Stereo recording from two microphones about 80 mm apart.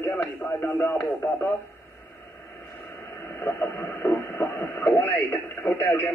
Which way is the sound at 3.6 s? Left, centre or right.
Left.